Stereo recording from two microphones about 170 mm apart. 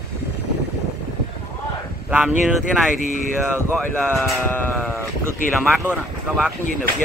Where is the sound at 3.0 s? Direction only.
50° left (ahead or behind).